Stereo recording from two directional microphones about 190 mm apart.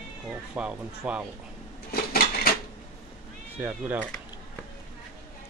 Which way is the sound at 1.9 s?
55° left (ahead or behind).